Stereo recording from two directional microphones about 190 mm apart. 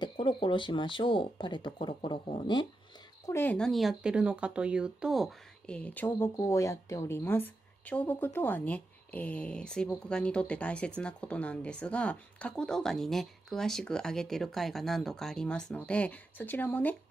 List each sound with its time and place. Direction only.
0.0 s speech: 25° left (ahead or behind)
3.3 s speech: 10° left (ahead or behind)